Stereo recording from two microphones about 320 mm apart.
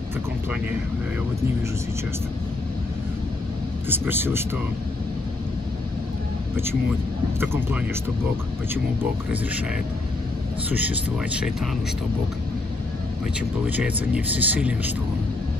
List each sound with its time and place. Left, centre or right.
3.9 s speech: centre
7.3 s speech: centre
11.3 s speech: centre
13.7 s speech: centre